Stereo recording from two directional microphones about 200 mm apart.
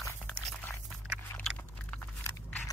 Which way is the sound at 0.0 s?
10° left (ahead or behind).